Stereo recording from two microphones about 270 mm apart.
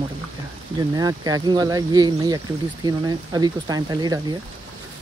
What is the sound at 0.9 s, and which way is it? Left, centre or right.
Speech, centre.